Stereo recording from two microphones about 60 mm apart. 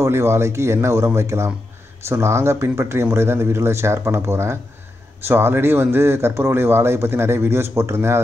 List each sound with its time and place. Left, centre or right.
0.1 s speech: right